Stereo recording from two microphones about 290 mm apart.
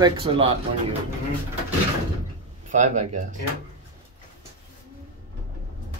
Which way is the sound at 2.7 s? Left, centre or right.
Right.